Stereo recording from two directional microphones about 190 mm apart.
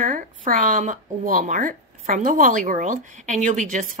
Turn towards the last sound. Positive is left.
turn(degrees=-45)  # may be behind; listen again after turning